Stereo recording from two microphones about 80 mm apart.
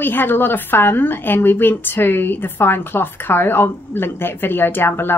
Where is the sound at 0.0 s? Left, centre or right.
Left.